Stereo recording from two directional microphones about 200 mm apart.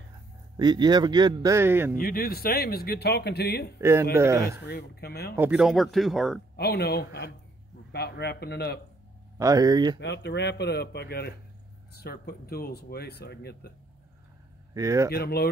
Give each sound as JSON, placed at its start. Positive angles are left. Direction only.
{"t": 0.6, "sound": "a man's voice", "side_deg": -20}
{"t": 2.0, "sound": "speech", "side_deg": 45}
{"t": 3.8, "sound": "speech", "side_deg": -15}
{"t": 4.6, "sound": "speech", "side_deg": 55}
{"t": 5.3, "sound": "speech", "side_deg": -5}
{"t": 6.5, "sound": "speech", "side_deg": 55}
{"t": 9.4, "sound": "a man's voice", "side_deg": -20}
{"t": 9.9, "sound": "speech", "side_deg": 60}
{"t": 14.7, "sound": "speech", "side_deg": -15}
{"t": 15.0, "sound": "speech", "side_deg": 50}